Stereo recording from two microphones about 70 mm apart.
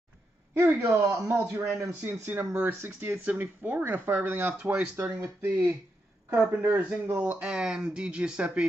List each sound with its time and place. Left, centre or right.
0.6 s speech: right
3.3 s speech: right
6.3 s speech: centre
7.3 s speech: centre